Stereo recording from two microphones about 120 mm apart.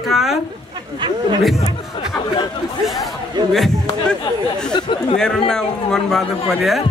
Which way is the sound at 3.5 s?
Centre (ahead or behind).